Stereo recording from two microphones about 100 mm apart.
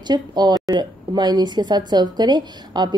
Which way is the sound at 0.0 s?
45° right (ahead or behind).